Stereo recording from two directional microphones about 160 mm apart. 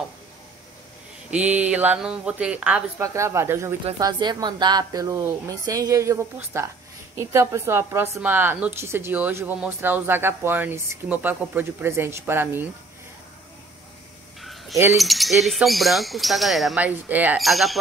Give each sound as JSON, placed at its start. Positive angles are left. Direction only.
{"t": 1.3, "sound": "a woman's voice", "side_deg": -10}
{"t": 14.4, "sound": "a sound", "side_deg": 0}
{"t": 15.0, "sound": "speech", "side_deg": 0}
{"t": 17.4, "sound": "speech", "side_deg": 0}